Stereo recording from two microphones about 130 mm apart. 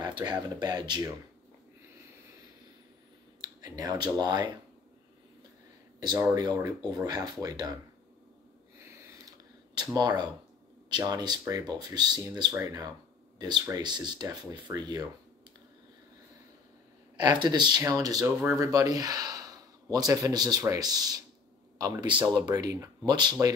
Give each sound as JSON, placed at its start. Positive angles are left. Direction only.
{"t": 0.0, "sound": "speech", "side_deg": -35}
{"t": 3.3, "sound": "speech", "side_deg": -30}
{"t": 6.3, "sound": "speech", "side_deg": -30}
{"t": 8.7, "sound": "a sound", "side_deg": -20}
{"t": 9.9, "sound": "speech", "side_deg": -30}
{"t": 17.4, "sound": "speech", "side_deg": -35}